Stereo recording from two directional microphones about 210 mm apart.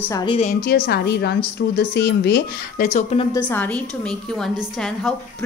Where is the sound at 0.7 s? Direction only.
50° left (ahead or behind); by 3.3 s 30° left (ahead or behind).